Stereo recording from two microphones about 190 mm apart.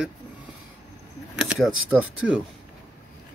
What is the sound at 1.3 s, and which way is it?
Speech, 5° right (ahead or behind).